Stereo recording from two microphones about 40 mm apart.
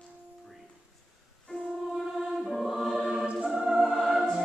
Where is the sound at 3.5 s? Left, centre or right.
Centre.